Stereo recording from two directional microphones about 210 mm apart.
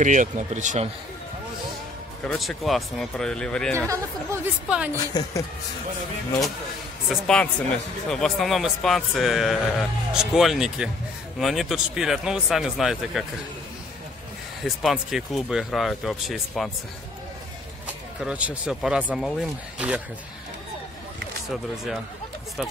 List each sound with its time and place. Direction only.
0.0 s speech: 35° right (ahead or behind)
2.2 s speech: centre (ahead or behind)
3.7 s speech: 15° right (ahead or behind)
7.1 s speech: 5° left (ahead or behind)
14.6 s speech: centre (ahead or behind)
18.2 s speech: 5° right (ahead or behind)
21.5 s speech: centre (ahead or behind)